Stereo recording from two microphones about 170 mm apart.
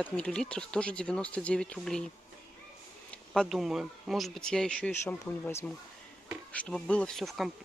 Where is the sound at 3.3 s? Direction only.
Centre (ahead or behind).